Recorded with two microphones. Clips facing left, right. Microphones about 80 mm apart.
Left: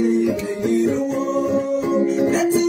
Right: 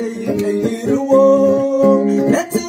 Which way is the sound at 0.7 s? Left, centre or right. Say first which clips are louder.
Even; right.